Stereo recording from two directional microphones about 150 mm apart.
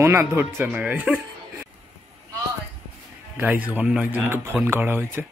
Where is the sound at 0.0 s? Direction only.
15° right (ahead or behind).